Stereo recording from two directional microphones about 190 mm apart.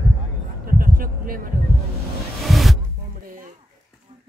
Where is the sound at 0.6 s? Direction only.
50° right (ahead or behind).